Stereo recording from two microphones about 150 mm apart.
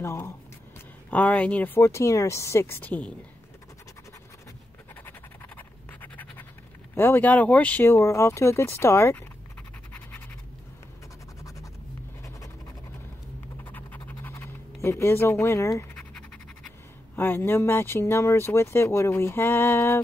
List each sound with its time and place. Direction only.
0.0 s speech: 20° left (ahead or behind)
5.6 s scratch: 10° left (ahead or behind)
7.0 s speech: 10° left (ahead or behind)
13.7 s scratch: 10° left (ahead or behind)
17.1 s speech: 15° left (ahead or behind)